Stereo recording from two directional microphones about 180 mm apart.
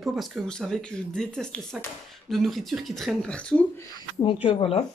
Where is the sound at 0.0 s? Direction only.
Centre (ahead or behind).